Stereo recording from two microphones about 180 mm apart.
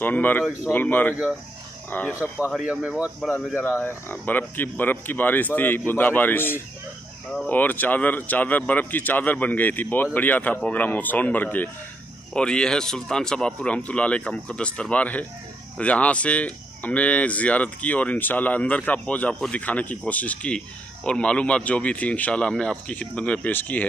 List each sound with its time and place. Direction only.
0.0 s speech: 10° left (ahead or behind)
2.3 s speech: 5° right (ahead or behind)
3.6 s speech: 10° left (ahead or behind)